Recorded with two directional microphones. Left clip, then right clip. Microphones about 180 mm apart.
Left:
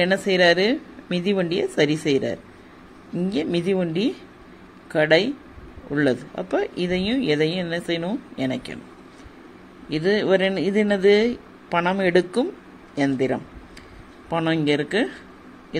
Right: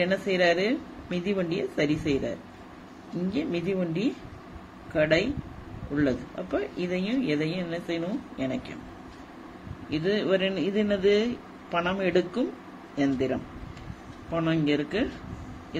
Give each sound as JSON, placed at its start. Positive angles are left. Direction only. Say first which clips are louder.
{"t": 0.0, "sound": "speech", "louder": "left 6 dB", "side_deg": 35}
{"t": 9.8, "sound": "speech", "louder": "left 6 dB", "side_deg": 30}